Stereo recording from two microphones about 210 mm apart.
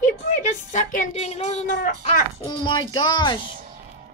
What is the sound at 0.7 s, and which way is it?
Speech, 35° left (ahead or behind).